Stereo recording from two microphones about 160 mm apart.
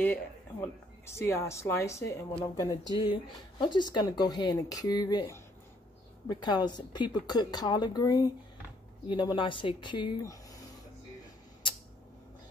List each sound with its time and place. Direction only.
0.0 s a woman's voice: 10° left (ahead or behind)
6.2 s a woman's voice: 25° left (ahead or behind)